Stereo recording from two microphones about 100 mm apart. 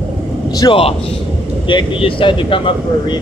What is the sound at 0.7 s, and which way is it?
Speech, 75° left (ahead or behind).